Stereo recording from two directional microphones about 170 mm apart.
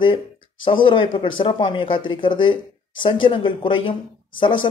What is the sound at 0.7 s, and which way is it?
Speech, 30° left (ahead or behind).